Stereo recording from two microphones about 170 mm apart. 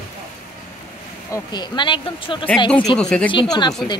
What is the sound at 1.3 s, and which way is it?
Speech, 25° left (ahead or behind).